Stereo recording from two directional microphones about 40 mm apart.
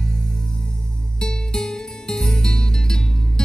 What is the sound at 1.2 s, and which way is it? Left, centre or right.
Music, centre.